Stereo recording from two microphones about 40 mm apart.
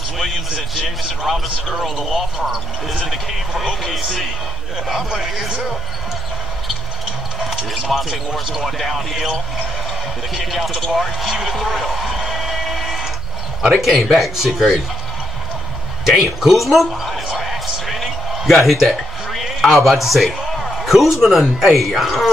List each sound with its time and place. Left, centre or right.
0.8 s speech: centre
2.0 s a man's voice: centre
2.4 s a man's voice: centre
7.4 s speech: centre
10.3 s speech: centre
10.9 s a sound: centre
13.6 s a man's voice: centre
16.1 s speech: centre
17.4 s a sound: centre